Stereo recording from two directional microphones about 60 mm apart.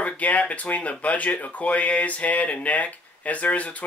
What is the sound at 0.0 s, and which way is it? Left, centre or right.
Speech, left.